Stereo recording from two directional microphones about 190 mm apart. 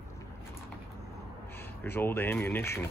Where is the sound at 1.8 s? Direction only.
10° left (ahead or behind).